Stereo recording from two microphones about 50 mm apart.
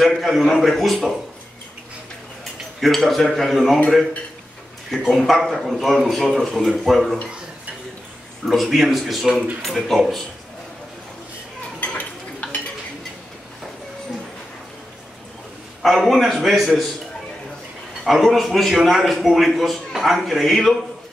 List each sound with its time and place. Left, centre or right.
0.0 s a man's voice: centre
2.8 s a man's voice: centre
4.9 s a man's voice: centre
8.5 s a man's voice: centre
11.8 s stir: left
15.8 s a man's voice: centre
18.0 s a man's voice: centre